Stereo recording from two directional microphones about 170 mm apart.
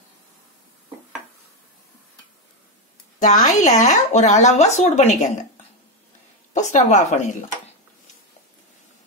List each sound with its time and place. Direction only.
3.2 s speech: 50° left (ahead or behind)
6.5 s speech: 45° left (ahead or behind)